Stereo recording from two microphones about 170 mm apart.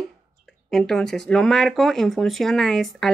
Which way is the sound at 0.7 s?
Centre (ahead or behind).